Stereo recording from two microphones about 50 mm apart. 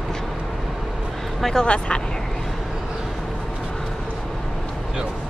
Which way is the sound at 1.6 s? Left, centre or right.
Centre.